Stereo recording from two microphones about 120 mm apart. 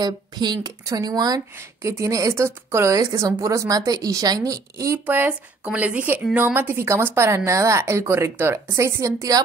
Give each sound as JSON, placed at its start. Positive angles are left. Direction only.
{"t": 0.0, "sound": "speech", "side_deg": -35}
{"t": 5.0, "sound": "speech", "side_deg": -15}